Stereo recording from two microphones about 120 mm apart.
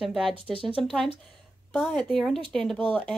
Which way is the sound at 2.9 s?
15° left (ahead or behind).